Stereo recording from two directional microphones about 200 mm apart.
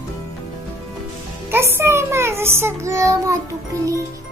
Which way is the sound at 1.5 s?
10° right (ahead or behind).